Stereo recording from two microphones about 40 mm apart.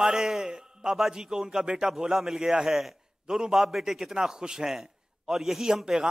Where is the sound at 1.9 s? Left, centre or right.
Centre.